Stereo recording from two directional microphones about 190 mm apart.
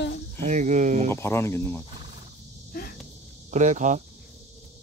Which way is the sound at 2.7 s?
50° left (ahead or behind).